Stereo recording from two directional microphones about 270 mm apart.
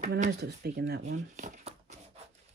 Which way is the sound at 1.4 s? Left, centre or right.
Right.